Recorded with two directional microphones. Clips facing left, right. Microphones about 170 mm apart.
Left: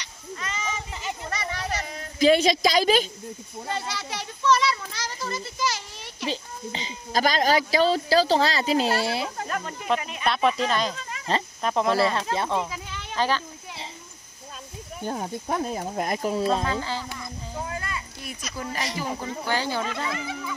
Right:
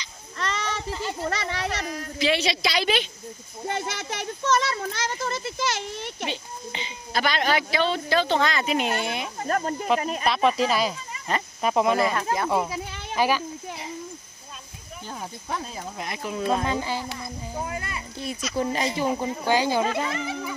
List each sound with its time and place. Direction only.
0.4 s a sound: 75° right (ahead or behind)
1.2 s speech: 65° right (ahead or behind)
2.1 s speech: 45° left (ahead or behind)
3.6 s a child's voice: 55° right (ahead or behind)
6.2 s speech: 35° left (ahead or behind)
9.5 s speech: 40° right (ahead or behind)
10.2 s speech: centre (ahead or behind)
12.0 s speech: 25° left (ahead or behind)
13.1 s speech: 10° right (ahead or behind)
15.0 s speech: 45° left (ahead or behind)
16.6 s a child's voice: 15° right (ahead or behind)